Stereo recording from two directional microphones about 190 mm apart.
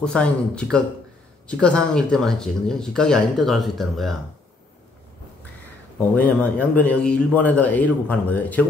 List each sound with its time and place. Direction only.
0.0 s speech: 5° left (ahead or behind)
6.1 s a man's voice: 10° left (ahead or behind)